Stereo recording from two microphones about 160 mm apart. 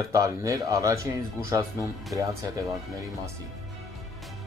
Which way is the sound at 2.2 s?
20° right (ahead or behind).